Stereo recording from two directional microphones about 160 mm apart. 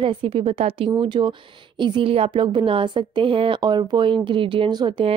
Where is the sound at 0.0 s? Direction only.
30° right (ahead or behind).